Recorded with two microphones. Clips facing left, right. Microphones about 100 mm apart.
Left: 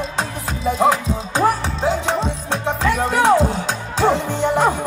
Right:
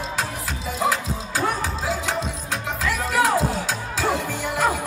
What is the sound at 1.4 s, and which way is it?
Music, 30° left (ahead or behind).